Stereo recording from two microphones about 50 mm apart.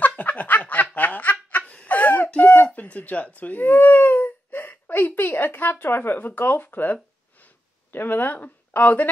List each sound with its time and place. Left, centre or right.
0.0 s snicker: left
1.7 s a sound: left
5.4 s speech: left